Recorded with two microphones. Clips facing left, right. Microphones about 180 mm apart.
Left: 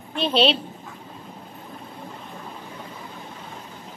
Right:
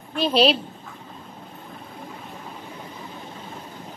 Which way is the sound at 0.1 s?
5° right (ahead or behind).